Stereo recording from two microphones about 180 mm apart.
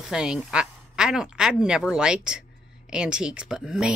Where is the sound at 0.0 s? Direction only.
5° right (ahead or behind).